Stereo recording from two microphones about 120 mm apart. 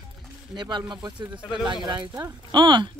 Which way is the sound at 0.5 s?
35° right (ahead or behind).